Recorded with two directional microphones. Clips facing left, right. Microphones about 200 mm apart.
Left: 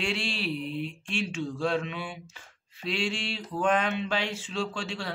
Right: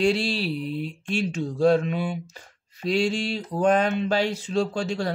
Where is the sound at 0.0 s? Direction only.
40° right (ahead or behind).